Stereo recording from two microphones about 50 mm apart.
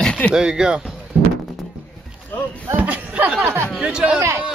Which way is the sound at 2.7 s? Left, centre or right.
Right.